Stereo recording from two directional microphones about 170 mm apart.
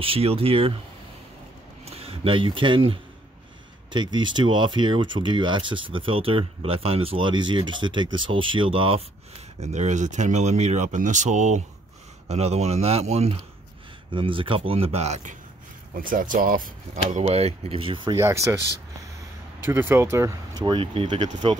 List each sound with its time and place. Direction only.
0.0 s speech: 35° right (ahead or behind)
1.9 s speech: 35° right (ahead or behind)
16.0 s speech: 55° right (ahead or behind); by 18.1 s 30° right (ahead or behind)
18.1 s speech: 20° right (ahead or behind)
19.6 s speech: 10° right (ahead or behind); by 21.5 s 30° right (ahead or behind)